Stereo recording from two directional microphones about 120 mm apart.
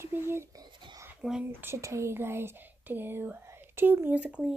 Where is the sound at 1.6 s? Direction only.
25° right (ahead or behind).